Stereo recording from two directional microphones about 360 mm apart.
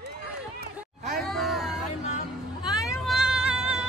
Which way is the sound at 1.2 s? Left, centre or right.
Centre.